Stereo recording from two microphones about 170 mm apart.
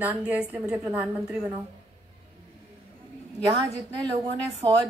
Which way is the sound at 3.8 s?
25° right (ahead or behind).